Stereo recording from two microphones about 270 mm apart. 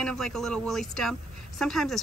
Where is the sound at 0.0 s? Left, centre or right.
Centre.